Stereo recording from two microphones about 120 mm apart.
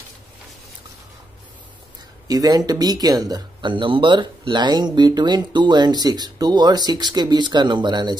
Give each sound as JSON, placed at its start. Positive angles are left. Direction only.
{"t": 2.2, "sound": "speech", "side_deg": -35}